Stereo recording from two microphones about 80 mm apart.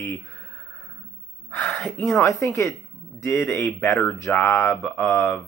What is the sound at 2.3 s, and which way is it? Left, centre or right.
Speech, left.